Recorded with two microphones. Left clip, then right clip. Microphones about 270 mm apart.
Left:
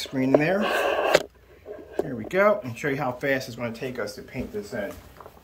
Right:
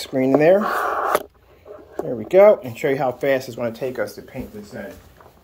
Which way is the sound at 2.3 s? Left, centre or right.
Centre.